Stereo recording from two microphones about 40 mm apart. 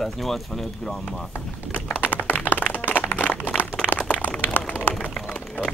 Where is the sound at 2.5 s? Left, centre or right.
Left.